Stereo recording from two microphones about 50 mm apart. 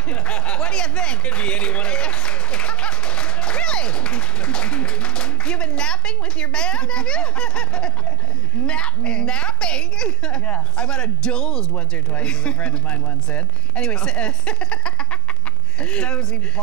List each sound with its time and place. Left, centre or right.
0.1 s speech: left
10.4 s speech: left
10.9 s a man's voice: centre
11.7 s speech: left